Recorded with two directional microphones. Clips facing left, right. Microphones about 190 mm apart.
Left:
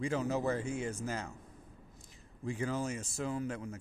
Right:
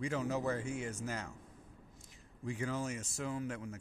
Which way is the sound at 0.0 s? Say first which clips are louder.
Left 3 dB; 30° left (ahead or behind).